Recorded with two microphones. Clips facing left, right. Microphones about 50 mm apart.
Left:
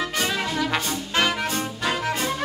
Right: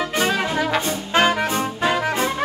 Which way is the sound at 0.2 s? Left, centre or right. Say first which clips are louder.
Right 5 dB; right.